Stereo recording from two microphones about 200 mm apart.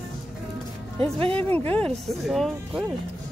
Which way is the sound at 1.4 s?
10° left (ahead or behind).